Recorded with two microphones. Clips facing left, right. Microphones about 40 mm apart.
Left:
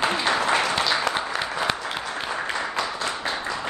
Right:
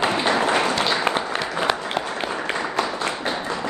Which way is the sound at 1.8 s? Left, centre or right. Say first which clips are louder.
Right 3 dB; right.